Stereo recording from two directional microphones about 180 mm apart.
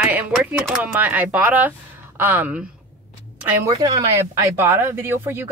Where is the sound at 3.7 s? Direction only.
20° right (ahead or behind).